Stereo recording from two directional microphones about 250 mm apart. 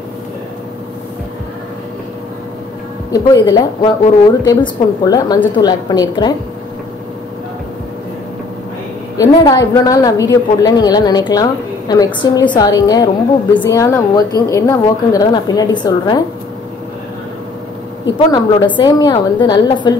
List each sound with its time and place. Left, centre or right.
3.1 s a woman's voice: centre
9.1 s a woman's voice: centre
18.1 s a woman's voice: centre